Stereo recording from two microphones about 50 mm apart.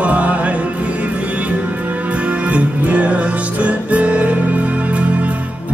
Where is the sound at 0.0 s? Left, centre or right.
Right.